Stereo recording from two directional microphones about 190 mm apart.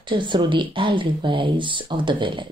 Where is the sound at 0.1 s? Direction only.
25° right (ahead or behind).